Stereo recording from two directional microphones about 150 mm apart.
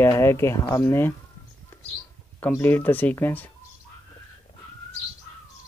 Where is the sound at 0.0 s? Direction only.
15° left (ahead or behind).